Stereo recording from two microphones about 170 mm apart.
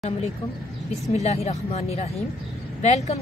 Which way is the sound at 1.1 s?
40° left (ahead or behind).